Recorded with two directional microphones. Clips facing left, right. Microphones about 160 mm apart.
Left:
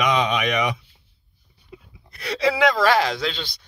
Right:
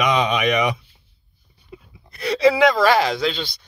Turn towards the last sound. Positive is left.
turn(degrees=-10)  # may be behind; listen again after turning